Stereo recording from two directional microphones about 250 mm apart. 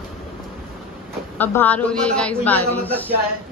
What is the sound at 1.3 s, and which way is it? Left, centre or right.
A woman's voice, centre.